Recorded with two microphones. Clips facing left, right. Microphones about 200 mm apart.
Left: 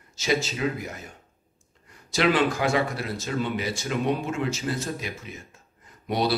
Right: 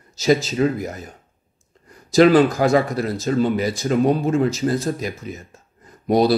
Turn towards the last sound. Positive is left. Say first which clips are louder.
# right 9 dB
turn(degrees=-40)  # may be behind; listen again after turning